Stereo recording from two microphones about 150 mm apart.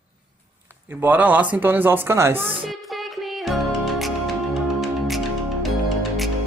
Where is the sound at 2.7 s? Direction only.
Centre (ahead or behind).